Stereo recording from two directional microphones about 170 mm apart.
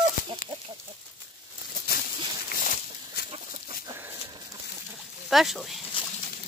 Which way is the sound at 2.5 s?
55° left (ahead or behind).